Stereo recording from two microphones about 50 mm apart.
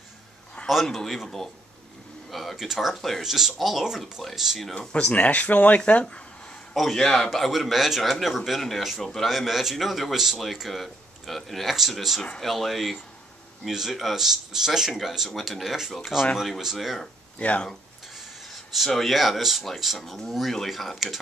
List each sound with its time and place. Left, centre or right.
0.8 s speech: centre
2.6 s speech: centre
4.7 s speech: centre
5.1 s speech: left
6.0 s a sound: centre
6.7 s a man's voice: centre
17.4 s speech: left
18.1 s snort: centre
18.9 s speech: centre